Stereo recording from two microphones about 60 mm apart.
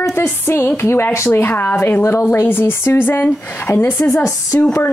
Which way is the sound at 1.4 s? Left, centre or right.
Left.